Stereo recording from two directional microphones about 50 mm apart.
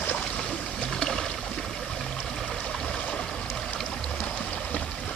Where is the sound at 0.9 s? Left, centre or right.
Centre.